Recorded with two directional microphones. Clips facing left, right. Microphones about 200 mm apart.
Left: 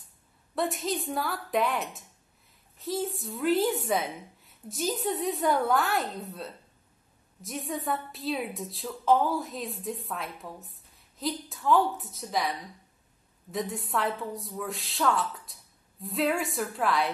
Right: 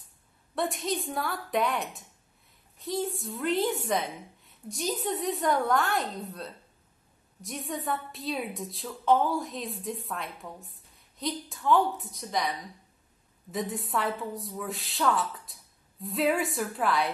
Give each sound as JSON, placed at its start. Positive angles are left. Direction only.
{"t": 0.6, "sound": "a woman's voice", "side_deg": 0}